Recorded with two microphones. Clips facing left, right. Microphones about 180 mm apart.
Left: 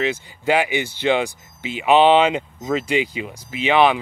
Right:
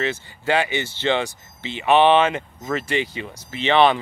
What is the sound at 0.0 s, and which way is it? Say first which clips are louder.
Speech: left 3 dB; 15° left (ahead or behind).